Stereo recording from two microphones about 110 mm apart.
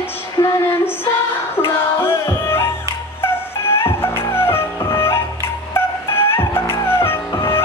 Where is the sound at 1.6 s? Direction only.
25° left (ahead or behind).